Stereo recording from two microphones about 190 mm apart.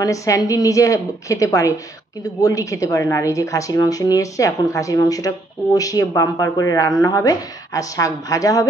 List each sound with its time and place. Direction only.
0.0 s speech: 15° left (ahead or behind)